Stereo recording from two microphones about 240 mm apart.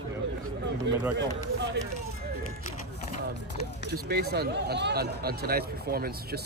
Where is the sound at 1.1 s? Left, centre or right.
Right.